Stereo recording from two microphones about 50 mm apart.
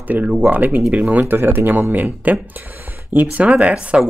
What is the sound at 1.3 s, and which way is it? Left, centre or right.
A man's voice, right.